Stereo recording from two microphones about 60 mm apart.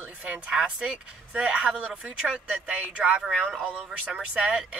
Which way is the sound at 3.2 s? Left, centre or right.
Centre.